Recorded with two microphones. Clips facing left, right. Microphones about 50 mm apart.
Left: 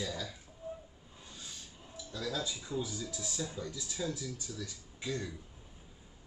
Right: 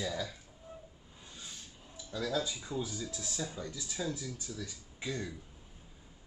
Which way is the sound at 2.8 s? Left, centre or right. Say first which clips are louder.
Even; centre.